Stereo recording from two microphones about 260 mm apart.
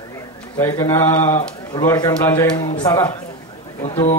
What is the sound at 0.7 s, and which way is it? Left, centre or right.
Speech, left.